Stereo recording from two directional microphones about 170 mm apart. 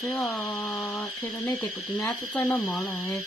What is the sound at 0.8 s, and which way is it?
Speech, 15° left (ahead or behind).